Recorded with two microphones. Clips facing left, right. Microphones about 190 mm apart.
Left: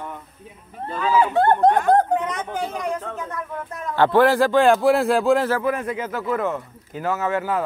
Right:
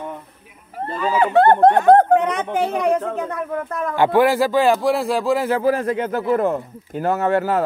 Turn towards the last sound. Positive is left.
turn(degrees=-35)  # may be behind; listen again after turning